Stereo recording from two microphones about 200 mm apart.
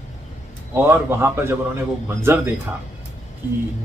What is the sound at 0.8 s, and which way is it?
Speech, 10° right (ahead or behind).